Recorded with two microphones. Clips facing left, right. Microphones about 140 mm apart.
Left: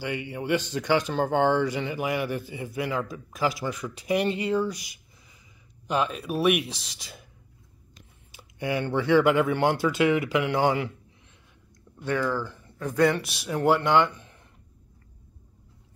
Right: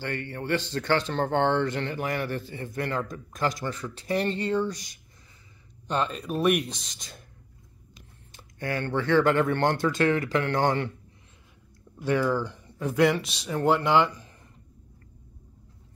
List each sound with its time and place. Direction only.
0.0 s speech: 10° left (ahead or behind)
8.3 s speech: 10° left (ahead or behind)
12.0 s speech: 10° right (ahead or behind)
12.8 s speech: 5° right (ahead or behind)